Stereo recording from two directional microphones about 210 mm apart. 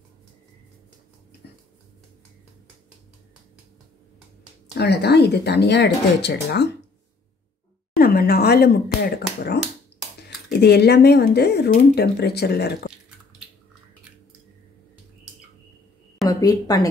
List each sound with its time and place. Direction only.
4.7 s speech: 50° left (ahead or behind)
7.9 s speech: 45° left (ahead or behind)
10.6 s speech: 50° left (ahead or behind)
16.3 s speech: 15° left (ahead or behind)